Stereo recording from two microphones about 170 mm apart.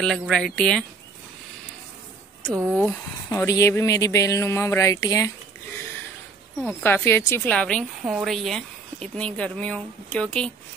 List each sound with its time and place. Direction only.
0.0 s a woman's voice: 5° left (ahead or behind)
2.4 s speech: 10° right (ahead or behind)
3.3 s speech: 20° left (ahead or behind)
6.8 s a woman's voice: 15° left (ahead or behind)